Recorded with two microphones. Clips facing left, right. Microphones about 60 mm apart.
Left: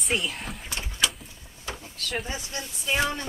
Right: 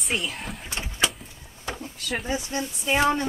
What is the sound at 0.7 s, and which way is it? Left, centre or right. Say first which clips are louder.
Vehicle: right 2 dB; right.